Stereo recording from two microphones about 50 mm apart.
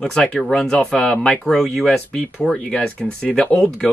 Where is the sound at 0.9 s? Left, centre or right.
Left.